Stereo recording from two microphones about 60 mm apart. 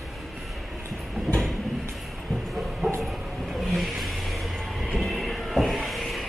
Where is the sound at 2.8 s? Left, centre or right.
Right.